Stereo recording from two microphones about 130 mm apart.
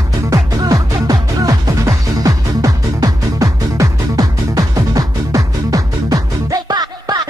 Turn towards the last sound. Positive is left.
turn(degrees=-30)  # may be behind; listen again after turning